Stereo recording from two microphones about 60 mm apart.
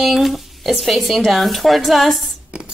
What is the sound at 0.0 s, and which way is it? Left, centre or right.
Speech, centre.